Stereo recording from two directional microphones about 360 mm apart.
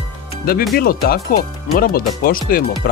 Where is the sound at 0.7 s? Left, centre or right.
Left.